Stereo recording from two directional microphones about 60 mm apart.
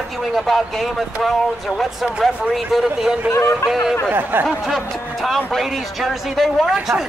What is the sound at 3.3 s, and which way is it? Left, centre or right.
Speech, left.